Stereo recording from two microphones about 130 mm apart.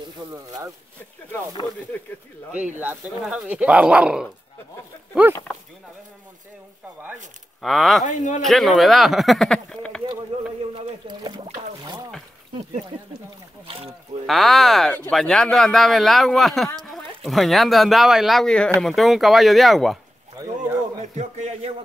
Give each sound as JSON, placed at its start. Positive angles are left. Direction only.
{"t": 2.8, "sound": "speech", "side_deg": -15}
{"t": 7.6, "sound": "speech", "side_deg": 0}
{"t": 8.0, "sound": "a man's voice", "side_deg": 70}
{"t": 8.4, "sound": "speech", "side_deg": 0}
{"t": 13.7, "sound": "speech", "side_deg": -50}
{"t": 14.2, "sound": "speech", "side_deg": 0}
{"t": 20.3, "sound": "a sound", "side_deg": -30}
{"t": 21.0, "sound": "a man's voice", "side_deg": -65}